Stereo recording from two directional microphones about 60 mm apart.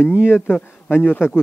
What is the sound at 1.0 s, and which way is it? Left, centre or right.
Speech, left.